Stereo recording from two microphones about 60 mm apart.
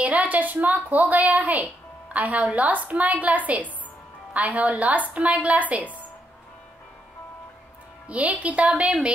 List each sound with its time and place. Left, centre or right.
0.0 s a woman's voice: right
8.1 s a woman's voice: right